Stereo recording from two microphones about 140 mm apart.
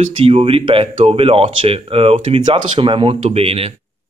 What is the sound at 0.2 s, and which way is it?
Speech, 45° right (ahead or behind).